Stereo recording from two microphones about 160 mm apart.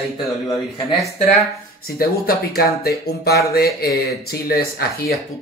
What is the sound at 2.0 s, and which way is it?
Speech, 70° left (ahead or behind).